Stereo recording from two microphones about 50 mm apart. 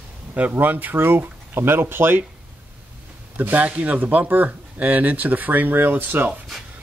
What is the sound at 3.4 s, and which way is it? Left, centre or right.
Speech, right.